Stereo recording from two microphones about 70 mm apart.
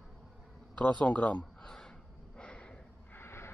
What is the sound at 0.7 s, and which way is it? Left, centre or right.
Speech, centre.